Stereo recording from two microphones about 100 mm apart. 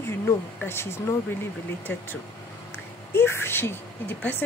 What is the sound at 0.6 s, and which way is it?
Speech, 25° left (ahead or behind).